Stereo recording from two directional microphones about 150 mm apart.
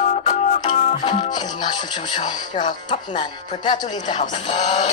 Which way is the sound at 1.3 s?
30° left (ahead or behind).